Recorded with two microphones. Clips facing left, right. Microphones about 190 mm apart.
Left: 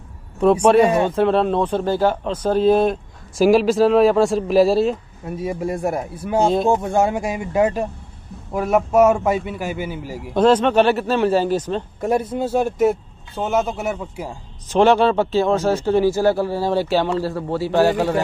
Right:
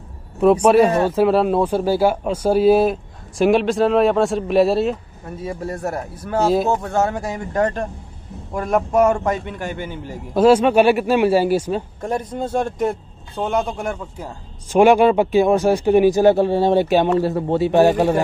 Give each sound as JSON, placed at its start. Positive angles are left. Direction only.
{"t": 0.4, "sound": "speech", "side_deg": -5}
{"t": 5.4, "sound": "speech", "side_deg": 15}
{"t": 6.4, "sound": "speech", "side_deg": -5}
{"t": 6.7, "sound": "speech", "side_deg": 15}
{"t": 10.3, "sound": "speech", "side_deg": -10}
{"t": 12.0, "sound": "speech", "side_deg": 10}
{"t": 14.7, "sound": "speech", "side_deg": -10}